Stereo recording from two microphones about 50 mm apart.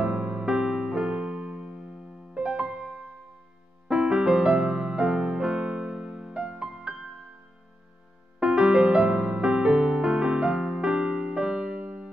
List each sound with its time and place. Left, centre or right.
0.0 s music: centre
2.4 s music: right
3.9 s music: centre
8.4 s music: centre